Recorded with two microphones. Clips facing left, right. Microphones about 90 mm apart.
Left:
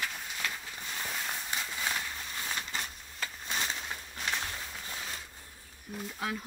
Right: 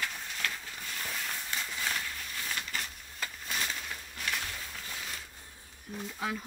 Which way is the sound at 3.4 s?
25° left (ahead or behind).